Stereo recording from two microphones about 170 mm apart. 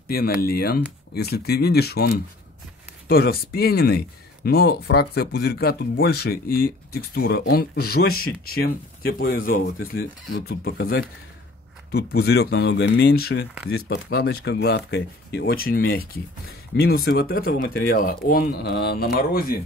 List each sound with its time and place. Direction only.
0.4 s speech: 65° left (ahead or behind)